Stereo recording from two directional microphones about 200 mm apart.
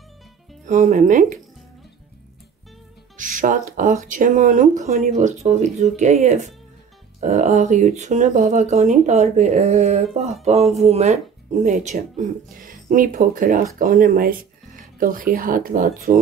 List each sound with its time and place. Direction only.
0.7 s speech: 35° right (ahead or behind)
3.2 s speech: 40° right (ahead or behind)